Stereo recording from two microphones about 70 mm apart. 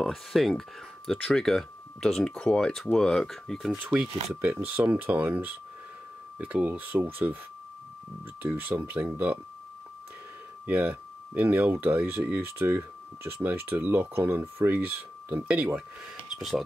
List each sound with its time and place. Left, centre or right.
0.0 s speech: centre
3.7 s speech: right
8.4 s speech: right
10.7 s speech: right
16.3 s speech: centre